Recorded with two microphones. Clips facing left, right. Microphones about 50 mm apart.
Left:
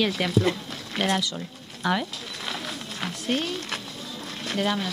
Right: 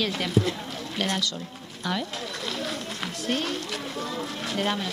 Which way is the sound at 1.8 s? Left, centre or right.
Left.